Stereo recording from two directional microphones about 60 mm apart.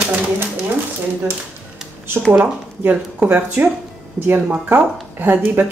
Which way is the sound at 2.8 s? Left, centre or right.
Right.